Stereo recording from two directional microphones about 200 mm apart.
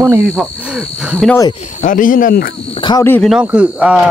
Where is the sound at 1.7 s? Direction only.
40° left (ahead or behind).